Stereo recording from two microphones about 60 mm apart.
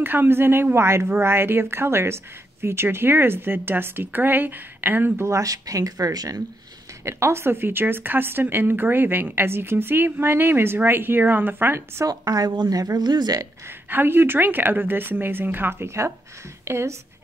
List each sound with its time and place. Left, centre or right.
0.0 s a woman's voice: right
5.2 s speech: right
7.1 s speech: right
12.0 s a woman's voice: right
13.8 s speech: right
16.6 s speech: right